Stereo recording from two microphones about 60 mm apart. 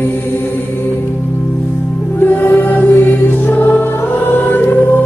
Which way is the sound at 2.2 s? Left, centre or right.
Left.